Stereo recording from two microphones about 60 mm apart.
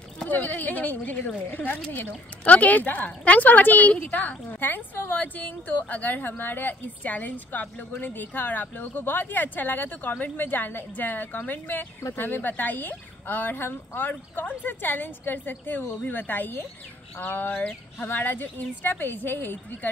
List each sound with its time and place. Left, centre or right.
0.3 s speech: left